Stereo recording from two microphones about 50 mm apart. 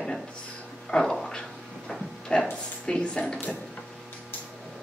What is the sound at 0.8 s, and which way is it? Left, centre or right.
Speech, centre.